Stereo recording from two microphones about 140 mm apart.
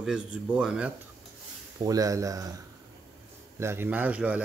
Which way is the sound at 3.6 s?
15° right (ahead or behind).